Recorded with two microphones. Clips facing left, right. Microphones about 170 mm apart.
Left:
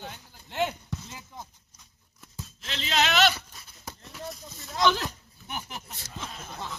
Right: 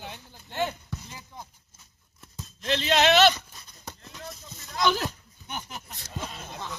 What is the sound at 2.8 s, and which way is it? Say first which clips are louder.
Speech: right 4 dB; 35° right (ahead or behind).